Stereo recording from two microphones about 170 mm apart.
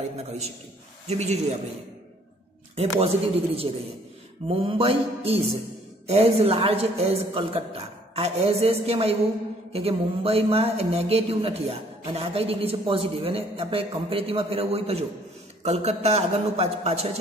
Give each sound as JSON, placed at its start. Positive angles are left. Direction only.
{"t": 1.0, "sound": "speech", "side_deg": -40}
{"t": 2.7, "sound": "speech", "side_deg": -35}